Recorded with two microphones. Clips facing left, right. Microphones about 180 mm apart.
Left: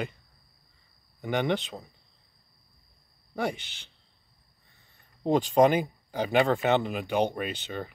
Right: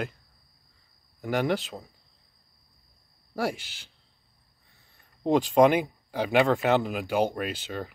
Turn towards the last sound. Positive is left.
turn(degrees=0)  # may be behind; listen again after turning